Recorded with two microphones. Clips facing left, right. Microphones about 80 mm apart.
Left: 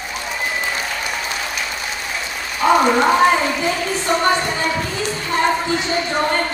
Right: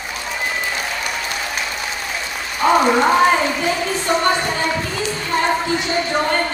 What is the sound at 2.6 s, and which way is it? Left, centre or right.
Rain, centre.